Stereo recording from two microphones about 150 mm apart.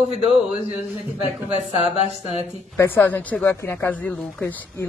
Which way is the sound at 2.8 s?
15° left (ahead or behind).